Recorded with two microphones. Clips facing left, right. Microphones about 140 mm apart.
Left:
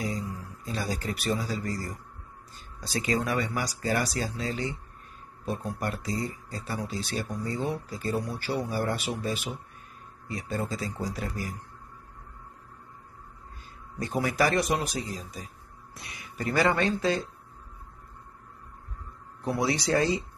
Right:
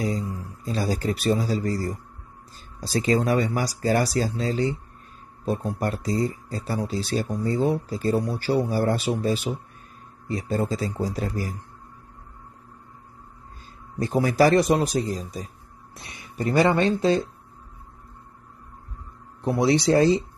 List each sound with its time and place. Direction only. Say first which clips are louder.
0.0 s a man's voice: right 5 dB; 30° right (ahead or behind)
13.9 s speech: right 7 dB; 30° right (ahead or behind)
15.9 s speech: right 2 dB; 25° right (ahead or behind)
19.4 s speech: right 7 dB; 30° right (ahead or behind)